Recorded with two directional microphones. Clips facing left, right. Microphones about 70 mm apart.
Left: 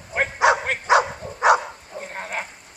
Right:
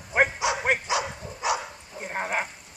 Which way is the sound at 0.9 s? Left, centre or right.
Left.